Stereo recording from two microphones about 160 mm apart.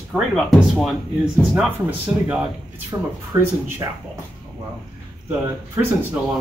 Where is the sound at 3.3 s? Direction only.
25° right (ahead or behind).